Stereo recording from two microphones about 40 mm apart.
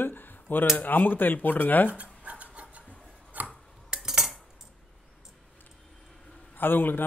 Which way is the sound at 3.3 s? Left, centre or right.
Right.